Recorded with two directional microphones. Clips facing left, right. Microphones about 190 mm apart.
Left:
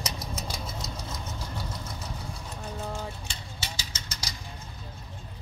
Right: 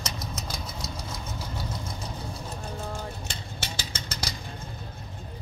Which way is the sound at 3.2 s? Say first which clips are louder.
Right 3 dB; 55° right (ahead or behind).